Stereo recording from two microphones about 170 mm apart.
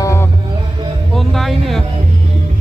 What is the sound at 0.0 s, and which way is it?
Music, 15° left (ahead or behind).